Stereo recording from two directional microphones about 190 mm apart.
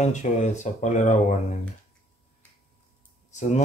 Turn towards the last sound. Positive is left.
turn(degrees=40)  # may be behind; listen again after turning